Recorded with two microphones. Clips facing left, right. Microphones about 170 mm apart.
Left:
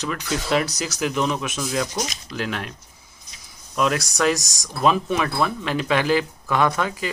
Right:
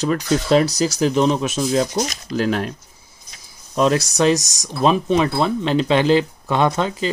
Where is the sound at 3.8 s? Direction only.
25° right (ahead or behind).